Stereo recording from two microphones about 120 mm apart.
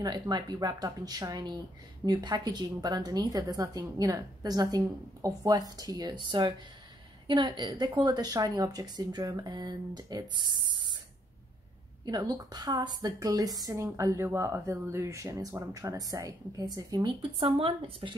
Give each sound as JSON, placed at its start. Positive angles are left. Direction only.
{"t": 0.0, "sound": "a woman's voice", "side_deg": -35}
{"t": 12.0, "sound": "a woman's voice", "side_deg": -35}
{"t": 17.2, "sound": "speech", "side_deg": -45}